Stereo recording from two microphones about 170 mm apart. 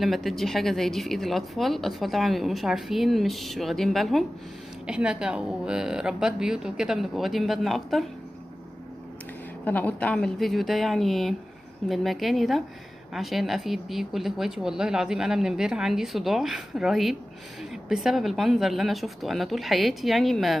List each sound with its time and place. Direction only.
0.0 s speech: centre (ahead or behind)
9.7 s speech: 10° left (ahead or behind)